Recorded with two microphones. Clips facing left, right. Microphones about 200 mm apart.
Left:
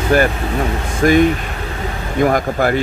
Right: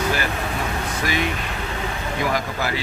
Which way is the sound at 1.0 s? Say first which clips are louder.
Left 15 dB; 50° left (ahead or behind).